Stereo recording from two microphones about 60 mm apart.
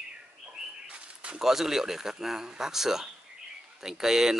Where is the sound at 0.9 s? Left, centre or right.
Centre.